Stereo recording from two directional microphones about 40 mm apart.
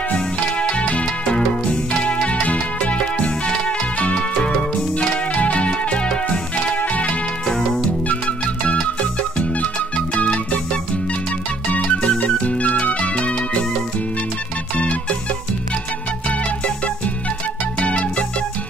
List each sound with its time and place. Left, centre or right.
0.1 s music: left
4.9 s music: left
7.4 s music: centre
8.1 s music: left
10.1 s music: left
11.8 s music: left
16.4 s music: left